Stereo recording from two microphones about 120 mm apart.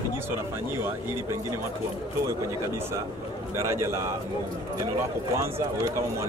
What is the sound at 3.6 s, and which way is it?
Speech, 25° right (ahead or behind).